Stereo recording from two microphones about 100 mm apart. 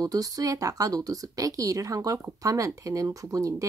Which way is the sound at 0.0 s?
35° right (ahead or behind).